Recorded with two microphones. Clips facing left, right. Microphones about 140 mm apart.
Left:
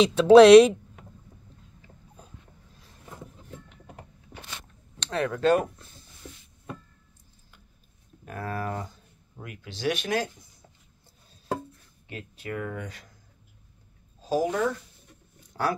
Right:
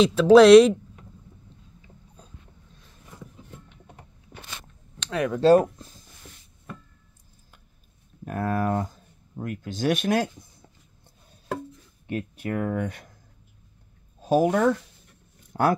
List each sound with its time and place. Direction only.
0.0 s speech: centre (ahead or behind)
5.0 s speech: 15° right (ahead or behind)
5.4 s speech: 35° right (ahead or behind)
8.3 s speech: 50° right (ahead or behind)
12.4 s speech: 40° right (ahead or behind)
12.7 s speech: 55° right (ahead or behind)
14.2 s speech: 55° right (ahead or behind)
15.5 s speech: 40° right (ahead or behind)